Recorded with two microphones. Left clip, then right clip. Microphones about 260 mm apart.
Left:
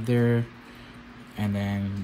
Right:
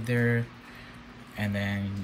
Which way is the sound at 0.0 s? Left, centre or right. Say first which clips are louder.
Left 3 dB; centre.